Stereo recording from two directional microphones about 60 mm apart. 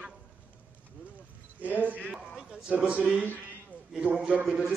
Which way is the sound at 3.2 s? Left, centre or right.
Left.